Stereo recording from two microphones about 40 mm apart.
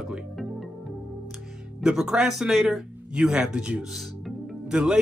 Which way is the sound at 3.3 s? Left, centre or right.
Right.